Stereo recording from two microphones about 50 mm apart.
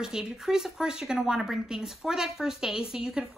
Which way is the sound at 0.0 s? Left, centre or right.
Centre.